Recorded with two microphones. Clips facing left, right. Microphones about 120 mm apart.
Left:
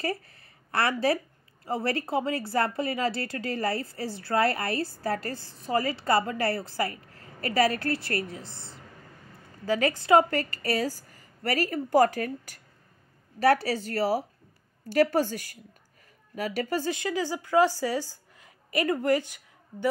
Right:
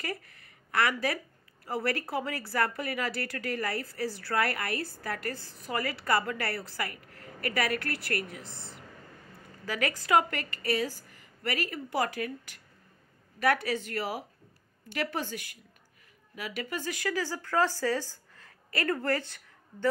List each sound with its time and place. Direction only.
0.0 s a woman's voice: 30° left (ahead or behind); by 19.9 s 15° left (ahead or behind)